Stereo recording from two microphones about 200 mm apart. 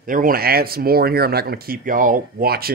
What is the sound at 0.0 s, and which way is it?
A man's voice, 45° right (ahead or behind).